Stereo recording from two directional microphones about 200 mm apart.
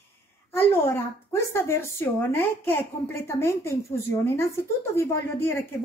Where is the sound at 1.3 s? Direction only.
15° left (ahead or behind).